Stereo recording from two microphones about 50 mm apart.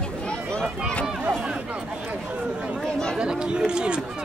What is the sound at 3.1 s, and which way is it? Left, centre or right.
Speech, centre.